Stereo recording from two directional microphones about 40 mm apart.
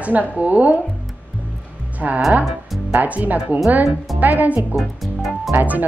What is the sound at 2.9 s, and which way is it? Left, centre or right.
Speech, right.